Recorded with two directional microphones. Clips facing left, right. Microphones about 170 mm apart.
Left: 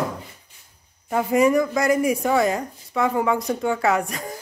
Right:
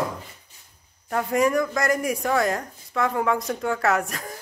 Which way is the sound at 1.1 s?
Centre (ahead or behind).